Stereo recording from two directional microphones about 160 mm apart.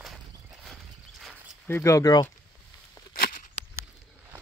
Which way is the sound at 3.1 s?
60° left (ahead or behind).